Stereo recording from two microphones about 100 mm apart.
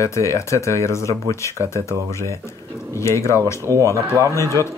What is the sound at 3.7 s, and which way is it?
Speech, 30° right (ahead or behind).